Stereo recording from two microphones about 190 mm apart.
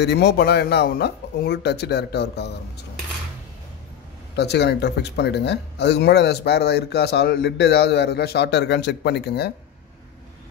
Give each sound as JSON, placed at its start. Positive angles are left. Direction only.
{"t": 0.0, "sound": "speech", "side_deg": 60}
{"t": 4.4, "sound": "speech", "side_deg": 60}